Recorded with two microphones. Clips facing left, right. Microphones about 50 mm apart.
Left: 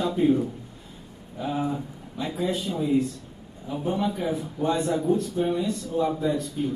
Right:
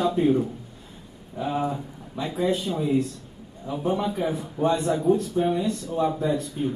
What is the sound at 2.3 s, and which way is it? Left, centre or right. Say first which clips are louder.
Speech: right 3 dB; right.